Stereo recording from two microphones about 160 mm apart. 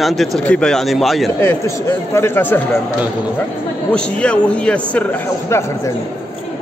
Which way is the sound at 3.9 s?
5° left (ahead or behind).